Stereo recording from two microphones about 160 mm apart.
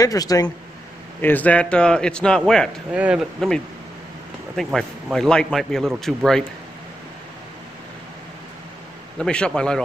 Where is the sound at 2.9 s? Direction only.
5° right (ahead or behind).